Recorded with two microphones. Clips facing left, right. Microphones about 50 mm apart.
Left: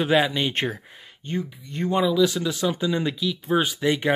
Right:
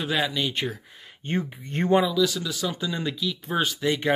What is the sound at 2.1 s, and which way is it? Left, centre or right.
Speech, left.